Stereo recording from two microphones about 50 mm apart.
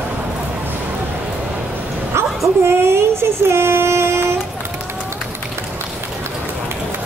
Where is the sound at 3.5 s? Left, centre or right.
Right.